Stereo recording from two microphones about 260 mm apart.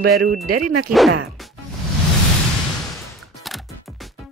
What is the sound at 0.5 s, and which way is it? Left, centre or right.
Speech, right.